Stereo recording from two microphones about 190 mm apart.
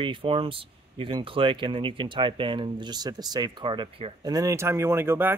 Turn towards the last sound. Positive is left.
turn(degrees=-10)  # may be behind; listen again after turning